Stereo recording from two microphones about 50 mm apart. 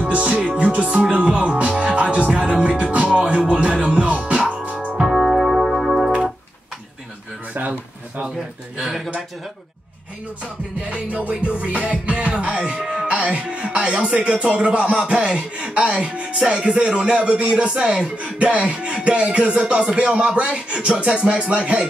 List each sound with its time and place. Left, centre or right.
0.0 s music: right
5.0 s music: centre
7.5 s a sound: right
8.7 s speech: centre
10.8 s speech: right